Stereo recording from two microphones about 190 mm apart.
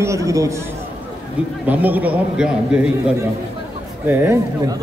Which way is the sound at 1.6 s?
10° right (ahead or behind).